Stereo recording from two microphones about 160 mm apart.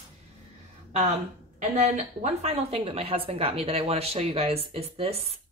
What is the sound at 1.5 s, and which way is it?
A woman's voice, 45° right (ahead or behind).